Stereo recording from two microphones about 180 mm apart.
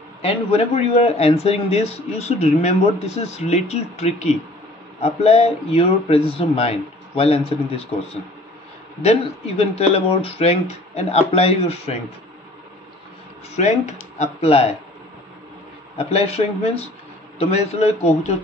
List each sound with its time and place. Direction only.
0.2 s speech: 35° left (ahead or behind)
9.0 s speech: 35° left (ahead or behind)
13.6 s speech: 40° left (ahead or behind)
16.0 s speech: 35° left (ahead or behind)